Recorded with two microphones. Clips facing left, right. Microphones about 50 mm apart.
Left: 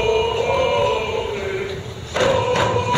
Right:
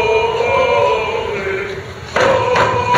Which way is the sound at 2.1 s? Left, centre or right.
Right.